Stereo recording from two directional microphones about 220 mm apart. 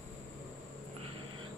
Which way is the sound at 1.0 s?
25° right (ahead or behind).